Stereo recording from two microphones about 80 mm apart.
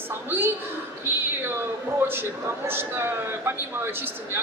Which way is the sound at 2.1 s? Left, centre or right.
Right.